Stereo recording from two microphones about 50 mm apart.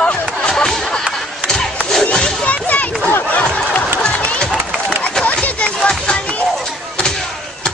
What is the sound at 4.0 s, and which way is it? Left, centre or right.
Crowd, left.